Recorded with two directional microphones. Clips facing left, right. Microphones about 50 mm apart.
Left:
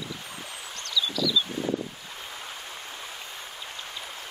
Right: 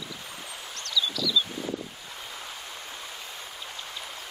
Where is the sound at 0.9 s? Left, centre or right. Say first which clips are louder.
Left 1 dB; centre.